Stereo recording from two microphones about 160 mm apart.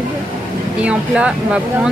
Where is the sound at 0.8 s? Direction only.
5° right (ahead or behind).